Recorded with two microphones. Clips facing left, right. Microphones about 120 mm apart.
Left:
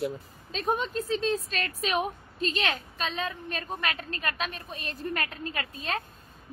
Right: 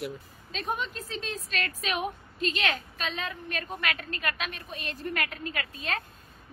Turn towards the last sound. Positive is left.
turn(degrees=35)  # may be behind; listen again after turning